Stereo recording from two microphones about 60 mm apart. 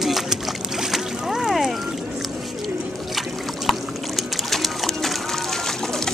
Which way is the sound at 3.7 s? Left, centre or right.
Centre.